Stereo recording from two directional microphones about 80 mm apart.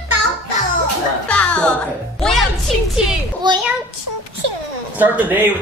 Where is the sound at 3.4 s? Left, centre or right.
Right.